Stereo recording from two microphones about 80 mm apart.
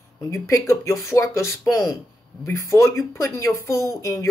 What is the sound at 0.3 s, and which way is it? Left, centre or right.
A man's voice, left.